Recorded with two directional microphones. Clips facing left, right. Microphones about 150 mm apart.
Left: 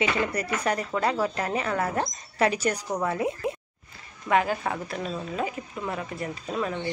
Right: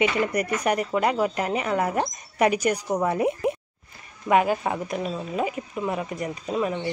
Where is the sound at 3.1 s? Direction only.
20° right (ahead or behind).